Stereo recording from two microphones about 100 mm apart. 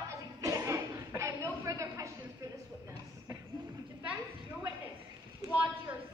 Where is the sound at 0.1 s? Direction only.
35° right (ahead or behind).